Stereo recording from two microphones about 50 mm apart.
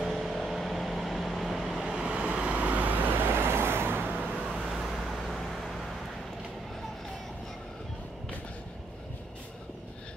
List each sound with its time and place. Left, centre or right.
0.0 s vehicle: centre
1.8 s vehicle: centre; by 4.1 s right
4.4 s vehicle: centre